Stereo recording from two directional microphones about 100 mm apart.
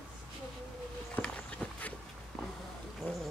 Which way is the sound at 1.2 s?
10° left (ahead or behind).